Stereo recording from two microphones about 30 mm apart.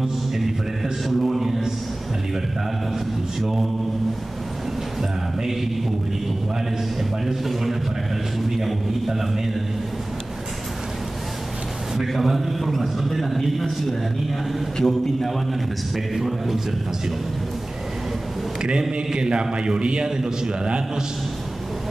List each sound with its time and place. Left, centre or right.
1.2 s a sound: centre
3.3 s a man's voice: centre
8.4 s a man's voice: centre
12.1 s a man's voice: centre
18.6 s a man's voice: right
20.1 s a man's voice: centre